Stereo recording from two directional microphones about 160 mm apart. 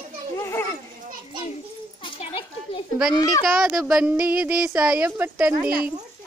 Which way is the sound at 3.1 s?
25° left (ahead or behind).